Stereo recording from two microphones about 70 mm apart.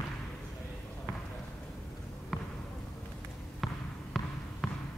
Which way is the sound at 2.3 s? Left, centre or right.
Centre.